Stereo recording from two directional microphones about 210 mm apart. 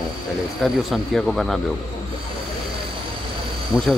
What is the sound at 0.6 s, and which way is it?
Speech, centre (ahead or behind).